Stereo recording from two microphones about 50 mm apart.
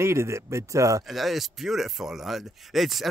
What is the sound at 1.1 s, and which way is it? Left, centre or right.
Speech, centre.